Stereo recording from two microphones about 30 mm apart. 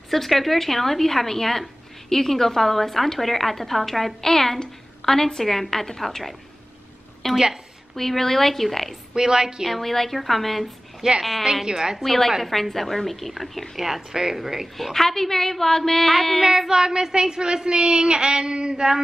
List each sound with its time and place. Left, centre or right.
0.1 s a woman's voice: centre
9.1 s speech: right
9.7 s a woman's voice: centre
11.0 s a woman's voice: right
12.0 s a woman's voice: centre
12.5 s a woman's voice: centre
13.8 s speech: centre
14.8 s a woman's voice: centre
16.3 s speech: centre